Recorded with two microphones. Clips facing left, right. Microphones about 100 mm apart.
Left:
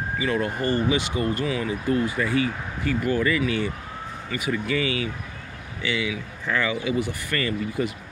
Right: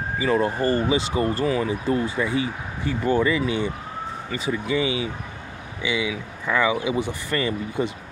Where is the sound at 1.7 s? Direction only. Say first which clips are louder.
Even; 25° right (ahead or behind).